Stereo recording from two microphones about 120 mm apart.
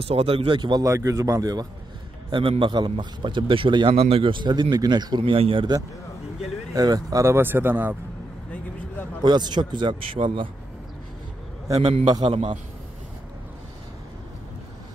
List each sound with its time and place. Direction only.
0.0 s speech: 55° right (ahead or behind)
0.8 s speech: 25° right (ahead or behind); by 5.8 s 45° right (ahead or behind)
6.7 s speech: 30° right (ahead or behind); by 8.0 s 15° right (ahead or behind)
9.2 s speech: 40° right (ahead or behind)
11.6 s a man's voice: 30° right (ahead or behind)
12.1 s speech: 45° right (ahead or behind)